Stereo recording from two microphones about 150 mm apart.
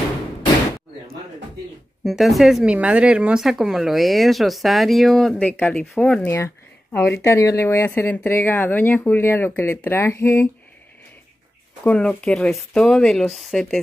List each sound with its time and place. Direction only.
2.0 s speech: centre (ahead or behind); by 10.5 s 20° left (ahead or behind)
11.8 s speech: 10° left (ahead or behind)